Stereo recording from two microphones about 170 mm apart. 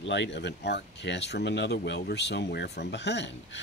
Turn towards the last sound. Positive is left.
turn(degrees=90)